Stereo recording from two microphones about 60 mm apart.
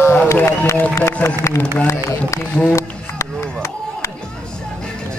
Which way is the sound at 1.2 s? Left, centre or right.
Left.